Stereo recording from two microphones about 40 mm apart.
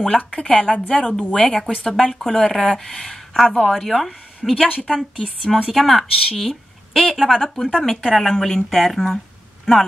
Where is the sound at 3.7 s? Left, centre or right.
Centre.